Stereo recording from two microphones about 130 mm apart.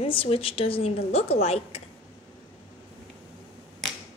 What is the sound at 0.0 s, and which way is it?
A woman's voice, 45° left (ahead or behind).